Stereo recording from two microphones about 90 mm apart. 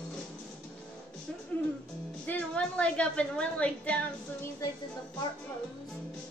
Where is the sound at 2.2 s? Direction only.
15° left (ahead or behind).